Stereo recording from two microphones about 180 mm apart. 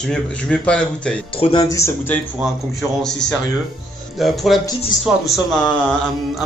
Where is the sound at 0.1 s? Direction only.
5° left (ahead or behind).